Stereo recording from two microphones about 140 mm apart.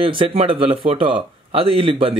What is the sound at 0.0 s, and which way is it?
Speech, 40° right (ahead or behind).